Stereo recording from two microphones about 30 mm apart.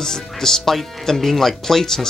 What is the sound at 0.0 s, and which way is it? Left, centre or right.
Speech, centre.